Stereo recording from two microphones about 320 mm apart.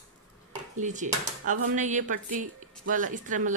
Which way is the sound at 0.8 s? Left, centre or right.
Right.